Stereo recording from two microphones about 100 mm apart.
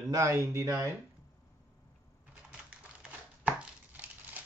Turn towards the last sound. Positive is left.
turn(degrees=-15)  # may be behind; listen again after turning